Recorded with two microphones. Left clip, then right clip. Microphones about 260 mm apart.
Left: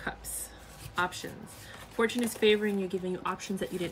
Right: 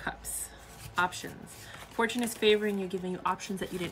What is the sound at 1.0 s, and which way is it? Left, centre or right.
Speech, centre.